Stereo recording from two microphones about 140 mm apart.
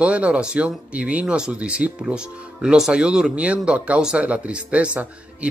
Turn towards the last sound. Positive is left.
turn(degrees=-10)  # may be behind; listen again after turning